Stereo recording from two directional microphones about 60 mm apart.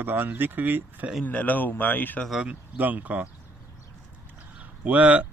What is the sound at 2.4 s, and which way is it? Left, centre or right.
Speech, right.